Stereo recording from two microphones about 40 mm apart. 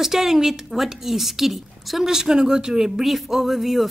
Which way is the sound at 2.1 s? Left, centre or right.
Centre.